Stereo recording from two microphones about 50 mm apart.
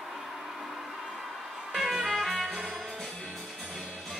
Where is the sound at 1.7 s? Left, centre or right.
Centre.